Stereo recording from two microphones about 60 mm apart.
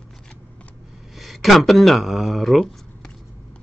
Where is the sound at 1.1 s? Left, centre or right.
Centre.